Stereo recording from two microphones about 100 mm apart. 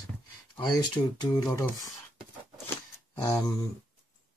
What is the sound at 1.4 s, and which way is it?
Speech, 30° left (ahead or behind).